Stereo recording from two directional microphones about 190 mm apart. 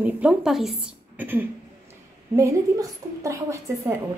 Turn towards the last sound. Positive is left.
turn(degrees=-15)  # may be behind; listen again after turning